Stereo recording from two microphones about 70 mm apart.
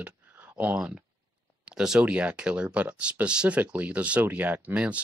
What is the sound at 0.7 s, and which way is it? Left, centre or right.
Speech, centre.